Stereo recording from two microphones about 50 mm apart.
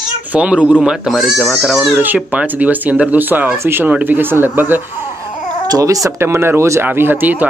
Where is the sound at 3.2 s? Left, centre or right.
Right.